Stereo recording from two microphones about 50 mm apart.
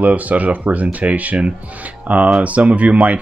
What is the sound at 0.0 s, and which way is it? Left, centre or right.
Speech, right.